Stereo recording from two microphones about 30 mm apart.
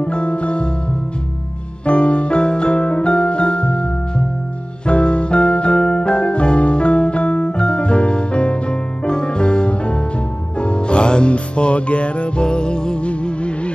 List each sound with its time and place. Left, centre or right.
0.0 s music: left
1.9 s music: left
5.8 s music: left
6.0 s music: left
13.0 s music: left